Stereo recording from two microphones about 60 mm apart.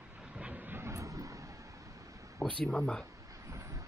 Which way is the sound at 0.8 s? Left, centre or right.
Right.